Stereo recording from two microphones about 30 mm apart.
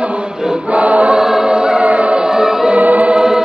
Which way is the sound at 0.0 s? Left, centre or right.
Right.